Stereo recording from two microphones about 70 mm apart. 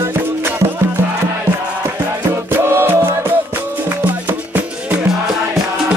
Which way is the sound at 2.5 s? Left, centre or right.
Right.